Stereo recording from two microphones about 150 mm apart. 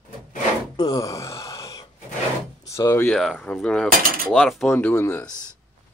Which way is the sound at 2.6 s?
20° left (ahead or behind).